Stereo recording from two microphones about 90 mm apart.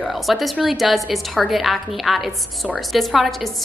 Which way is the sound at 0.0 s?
Centre (ahead or behind).